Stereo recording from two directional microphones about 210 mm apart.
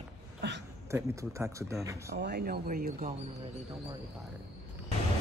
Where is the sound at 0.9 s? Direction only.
15° right (ahead or behind).